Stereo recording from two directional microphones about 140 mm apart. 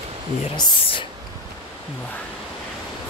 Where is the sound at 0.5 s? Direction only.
35° left (ahead or behind).